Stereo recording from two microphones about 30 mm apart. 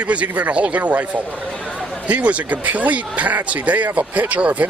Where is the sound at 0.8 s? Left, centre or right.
Right.